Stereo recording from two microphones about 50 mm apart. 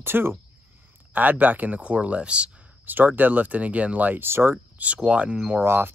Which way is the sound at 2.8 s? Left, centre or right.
Right.